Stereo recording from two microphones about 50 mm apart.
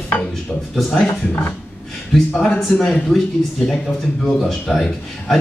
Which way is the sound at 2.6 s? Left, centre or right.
Centre.